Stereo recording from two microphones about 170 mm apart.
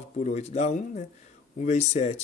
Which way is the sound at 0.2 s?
40° left (ahead or behind).